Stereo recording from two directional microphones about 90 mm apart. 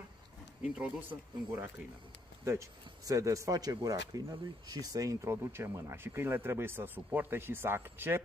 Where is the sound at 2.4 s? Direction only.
30° right (ahead or behind).